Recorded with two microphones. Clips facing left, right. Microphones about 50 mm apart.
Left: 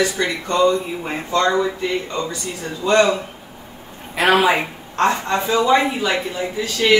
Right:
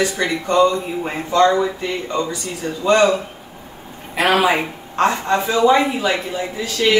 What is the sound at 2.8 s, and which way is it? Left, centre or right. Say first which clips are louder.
Speech: right 1 dB; centre.